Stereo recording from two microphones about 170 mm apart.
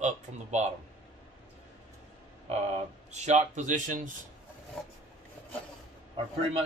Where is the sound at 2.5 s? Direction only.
40° right (ahead or behind).